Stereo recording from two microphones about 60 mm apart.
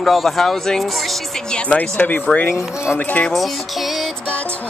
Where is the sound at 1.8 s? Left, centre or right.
Left.